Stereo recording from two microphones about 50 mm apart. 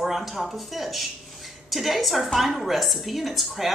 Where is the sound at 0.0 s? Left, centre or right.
Centre.